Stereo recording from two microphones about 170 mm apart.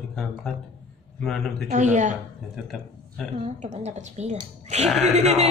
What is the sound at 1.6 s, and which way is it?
Speech, 45° right (ahead or behind).